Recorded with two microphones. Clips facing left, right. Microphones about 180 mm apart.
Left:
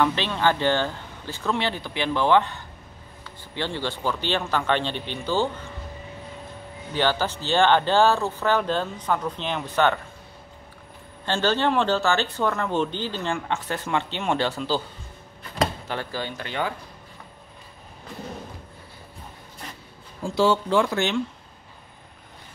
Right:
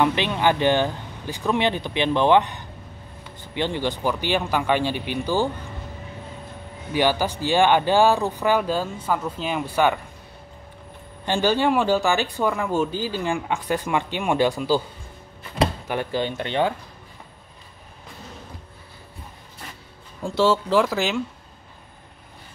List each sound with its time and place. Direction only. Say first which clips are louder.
0.0 s speech: right 2 dB; 15° right (ahead or behind)
6.9 s speech: right 3 dB; 10° right (ahead or behind)
11.2 s speech: right 2 dB; 15° right (ahead or behind)
15.9 s speech: right 5 dB; 20° right (ahead or behind)
20.2 s speech: right 1 dB; centre (ahead or behind)